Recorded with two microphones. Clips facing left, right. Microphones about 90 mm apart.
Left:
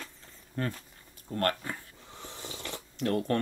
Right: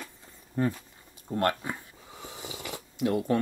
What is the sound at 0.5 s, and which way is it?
Dishes, 15° right (ahead or behind).